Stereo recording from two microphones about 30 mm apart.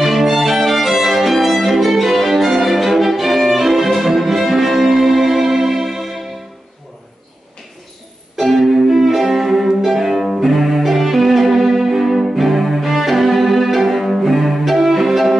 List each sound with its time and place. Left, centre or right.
0.0 s violin: centre
4.5 s music: centre
8.4 s music: centre